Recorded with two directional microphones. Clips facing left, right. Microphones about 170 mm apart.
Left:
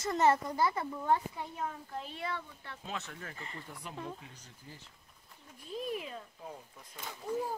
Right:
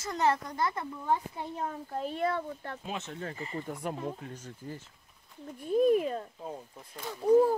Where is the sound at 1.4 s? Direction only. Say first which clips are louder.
Right 4 dB; 35° right (ahead or behind).